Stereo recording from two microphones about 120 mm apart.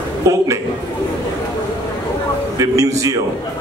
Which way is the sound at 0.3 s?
25° right (ahead or behind).